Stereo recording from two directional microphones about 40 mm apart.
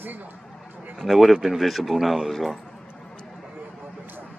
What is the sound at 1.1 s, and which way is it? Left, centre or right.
Speech, centre.